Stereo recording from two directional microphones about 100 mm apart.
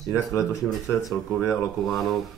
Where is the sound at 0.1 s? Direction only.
30° left (ahead or behind).